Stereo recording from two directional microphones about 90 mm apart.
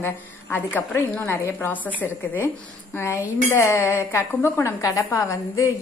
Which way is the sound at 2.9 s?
30° left (ahead or behind).